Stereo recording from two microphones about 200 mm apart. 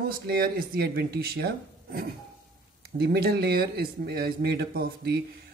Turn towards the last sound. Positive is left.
turn(degrees=-50)  # may be behind; listen again after turning